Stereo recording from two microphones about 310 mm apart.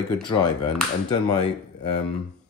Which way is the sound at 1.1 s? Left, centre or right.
Centre.